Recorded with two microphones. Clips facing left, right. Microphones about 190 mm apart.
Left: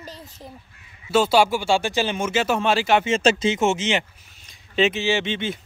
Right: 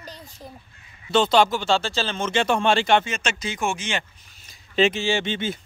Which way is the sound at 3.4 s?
20° left (ahead or behind).